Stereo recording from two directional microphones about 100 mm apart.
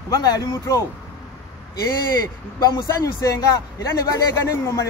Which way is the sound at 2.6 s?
40° left (ahead or behind).